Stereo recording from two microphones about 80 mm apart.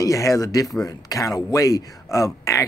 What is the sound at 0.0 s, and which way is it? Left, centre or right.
Speech, left.